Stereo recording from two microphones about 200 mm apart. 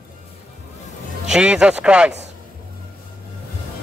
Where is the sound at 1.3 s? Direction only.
5° right (ahead or behind).